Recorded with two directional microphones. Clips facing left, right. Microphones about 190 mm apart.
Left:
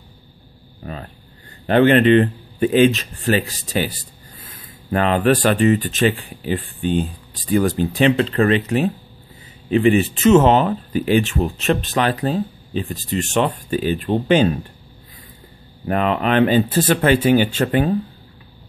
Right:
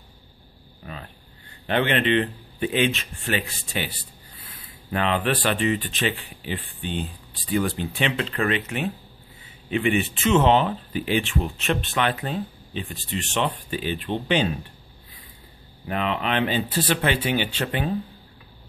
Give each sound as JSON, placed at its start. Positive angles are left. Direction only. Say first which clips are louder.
{"t": 0.8, "sound": "a sound", "louder": "left 7 dB", "side_deg": 40}
{"t": 1.7, "sound": "speech", "louder": "left 9 dB", "side_deg": 40}
{"t": 15.9, "sound": "speech", "louder": "left 7 dB", "side_deg": 45}